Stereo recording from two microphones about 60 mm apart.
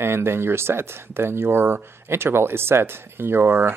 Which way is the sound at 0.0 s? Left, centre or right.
Right.